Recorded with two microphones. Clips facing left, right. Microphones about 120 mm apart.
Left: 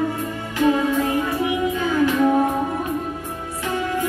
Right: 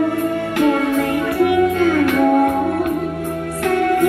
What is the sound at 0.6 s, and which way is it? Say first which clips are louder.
Music: right 1 dB; 55° right (ahead or behind).